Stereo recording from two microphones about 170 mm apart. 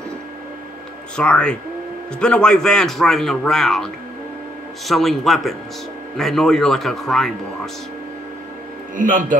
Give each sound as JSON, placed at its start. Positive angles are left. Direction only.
{"t": 1.1, "sound": "a man's voice", "side_deg": 5}
{"t": 8.9, "sound": "a man's voice", "side_deg": -50}